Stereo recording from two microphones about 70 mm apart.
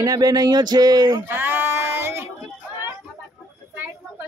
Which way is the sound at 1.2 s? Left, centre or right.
Right.